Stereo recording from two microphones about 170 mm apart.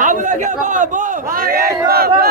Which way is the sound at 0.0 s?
50° right (ahead or behind).